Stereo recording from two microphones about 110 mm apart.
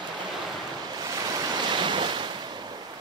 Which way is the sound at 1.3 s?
45° right (ahead or behind).